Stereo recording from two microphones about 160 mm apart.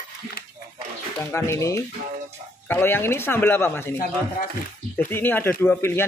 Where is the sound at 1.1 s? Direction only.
15° left (ahead or behind).